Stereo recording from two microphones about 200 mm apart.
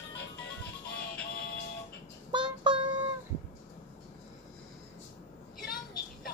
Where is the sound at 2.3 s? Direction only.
25° right (ahead or behind).